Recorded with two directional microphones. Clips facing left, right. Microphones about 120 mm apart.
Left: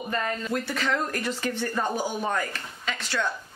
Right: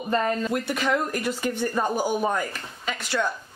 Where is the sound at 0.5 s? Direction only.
15° right (ahead or behind).